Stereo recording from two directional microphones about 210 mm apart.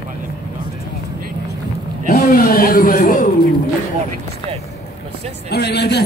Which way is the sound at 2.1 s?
40° left (ahead or behind).